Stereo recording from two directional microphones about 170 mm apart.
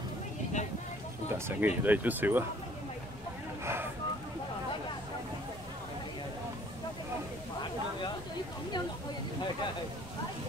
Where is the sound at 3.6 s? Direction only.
15° right (ahead or behind).